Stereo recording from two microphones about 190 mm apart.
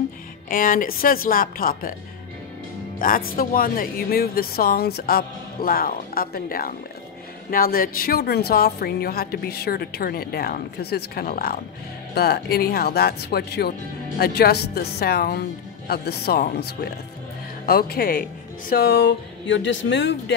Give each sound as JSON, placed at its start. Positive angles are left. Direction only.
{"t": 0.5, "sound": "speech", "side_deg": 45}
{"t": 3.0, "sound": "speech", "side_deg": 50}